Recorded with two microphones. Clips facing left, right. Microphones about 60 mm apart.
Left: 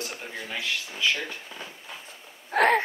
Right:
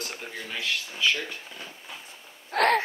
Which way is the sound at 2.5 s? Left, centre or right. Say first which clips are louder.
Left 1 dB; centre.